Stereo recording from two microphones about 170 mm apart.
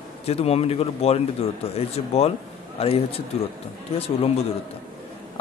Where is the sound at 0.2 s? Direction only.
35° left (ahead or behind).